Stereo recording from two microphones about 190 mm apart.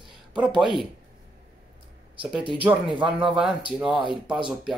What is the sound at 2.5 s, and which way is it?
Speech, 5° right (ahead or behind).